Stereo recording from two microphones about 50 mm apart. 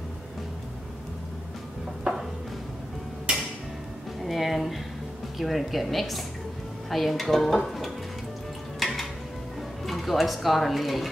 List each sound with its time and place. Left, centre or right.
4.2 s a sound: centre
5.4 s dishes: centre
8.7 s music: centre
9.8 s speech: centre